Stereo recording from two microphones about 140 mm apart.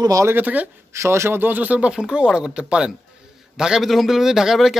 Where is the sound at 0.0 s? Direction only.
25° right (ahead or behind).